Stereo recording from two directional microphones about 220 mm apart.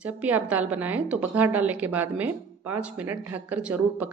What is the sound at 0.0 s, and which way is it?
A woman's voice, 5° right (ahead or behind).